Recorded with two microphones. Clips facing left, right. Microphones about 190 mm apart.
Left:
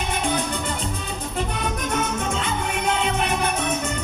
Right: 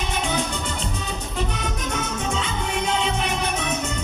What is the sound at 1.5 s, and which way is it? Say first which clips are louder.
Music: left 2 dB; 50° left (ahead or behind).